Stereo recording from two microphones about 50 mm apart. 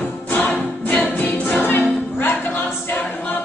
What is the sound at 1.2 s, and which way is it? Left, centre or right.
Choir, left.